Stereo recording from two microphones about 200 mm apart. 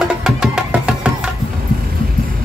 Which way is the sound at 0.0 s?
5° right (ahead or behind).